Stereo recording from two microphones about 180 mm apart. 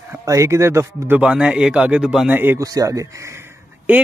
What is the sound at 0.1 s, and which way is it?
Speech, 15° right (ahead or behind).